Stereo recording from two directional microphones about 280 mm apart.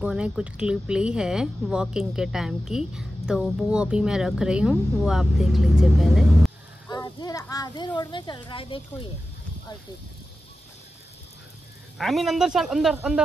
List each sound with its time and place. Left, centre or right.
0.0 s speech: centre
6.9 s speech: centre
12.0 s speech: centre